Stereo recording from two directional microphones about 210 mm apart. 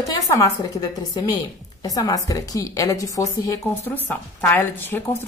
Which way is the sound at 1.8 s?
15° left (ahead or behind).